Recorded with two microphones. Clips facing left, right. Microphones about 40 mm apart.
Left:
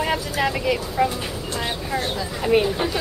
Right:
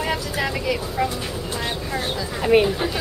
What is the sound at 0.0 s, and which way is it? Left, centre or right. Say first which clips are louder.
Speech: left 2 dB; centre.